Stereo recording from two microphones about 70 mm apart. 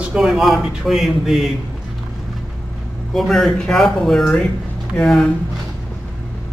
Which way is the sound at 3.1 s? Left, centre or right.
Centre.